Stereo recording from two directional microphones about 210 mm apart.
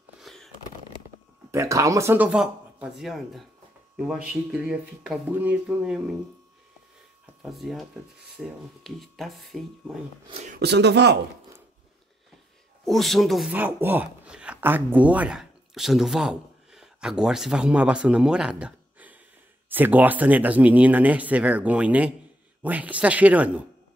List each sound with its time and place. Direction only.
0.2 s a sound: centre (ahead or behind)
1.5 s speech: 15° right (ahead or behind)
7.4 s speech: centre (ahead or behind)
10.5 s speech: 50° right (ahead or behind)
12.8 s speech: centre (ahead or behind)